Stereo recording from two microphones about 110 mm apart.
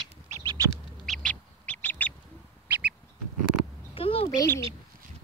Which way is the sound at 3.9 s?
55° left (ahead or behind).